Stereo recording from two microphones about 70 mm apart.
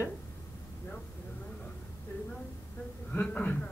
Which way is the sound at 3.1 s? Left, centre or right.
Left.